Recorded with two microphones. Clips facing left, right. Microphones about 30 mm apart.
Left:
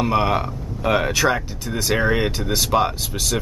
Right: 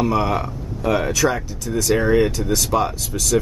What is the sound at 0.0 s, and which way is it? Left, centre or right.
Speech, left.